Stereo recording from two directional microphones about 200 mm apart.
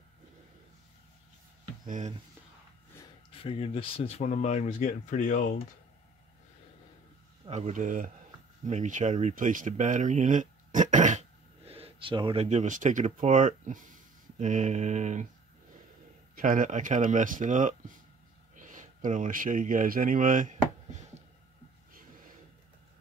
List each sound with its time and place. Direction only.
1.9 s speech: 40° right (ahead or behind)
3.3 s speech: 30° left (ahead or behind)
7.4 s speech: 35° right (ahead or behind)
16.3 s speech: 40° right (ahead or behind)